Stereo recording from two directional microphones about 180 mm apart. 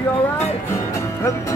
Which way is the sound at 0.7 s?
15° left (ahead or behind).